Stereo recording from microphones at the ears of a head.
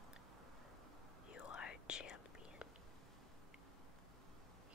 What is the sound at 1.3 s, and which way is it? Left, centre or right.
Whispering, left.